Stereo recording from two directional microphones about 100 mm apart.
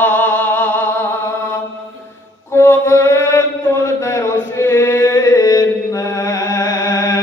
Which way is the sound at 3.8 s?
25° left (ahead or behind).